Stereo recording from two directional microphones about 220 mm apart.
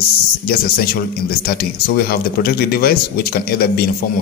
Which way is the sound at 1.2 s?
45° left (ahead or behind).